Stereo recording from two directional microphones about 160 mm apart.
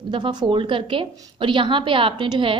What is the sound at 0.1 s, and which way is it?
A woman's voice, 30° right (ahead or behind).